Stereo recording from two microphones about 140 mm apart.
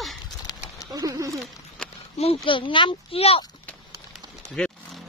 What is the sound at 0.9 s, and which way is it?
Speech, 25° right (ahead or behind).